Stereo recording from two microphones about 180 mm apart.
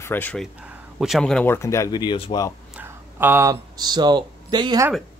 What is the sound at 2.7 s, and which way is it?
Speech, 10° right (ahead or behind).